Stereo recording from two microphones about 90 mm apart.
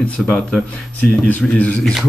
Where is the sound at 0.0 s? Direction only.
15° left (ahead or behind).